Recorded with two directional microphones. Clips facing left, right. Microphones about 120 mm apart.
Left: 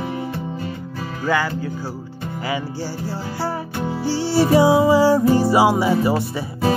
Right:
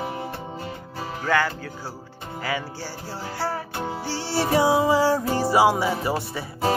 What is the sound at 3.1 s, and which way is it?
Music, 15° left (ahead or behind).